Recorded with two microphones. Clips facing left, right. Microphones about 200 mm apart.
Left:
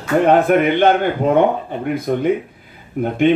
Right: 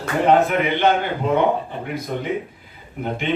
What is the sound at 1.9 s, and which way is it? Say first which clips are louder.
Speech: left 8 dB; 50° left (ahead or behind).